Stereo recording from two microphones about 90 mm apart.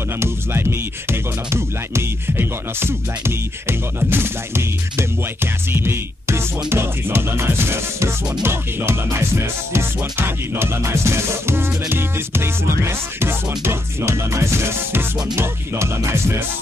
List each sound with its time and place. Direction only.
0.2 s music: 30° right (ahead or behind)